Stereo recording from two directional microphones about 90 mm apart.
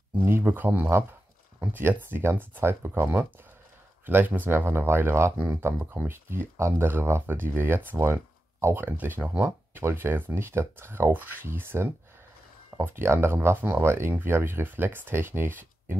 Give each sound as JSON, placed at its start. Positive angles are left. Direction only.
{"t": 0.2, "sound": "speech", "side_deg": -25}